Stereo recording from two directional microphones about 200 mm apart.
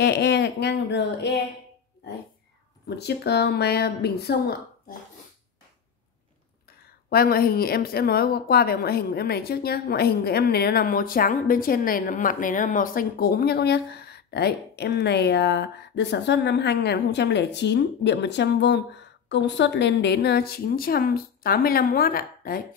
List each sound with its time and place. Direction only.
0.0 s speech: 55° left (ahead or behind)
3.0 s speech: 55° left (ahead or behind)
7.1 s speech: 50° left (ahead or behind)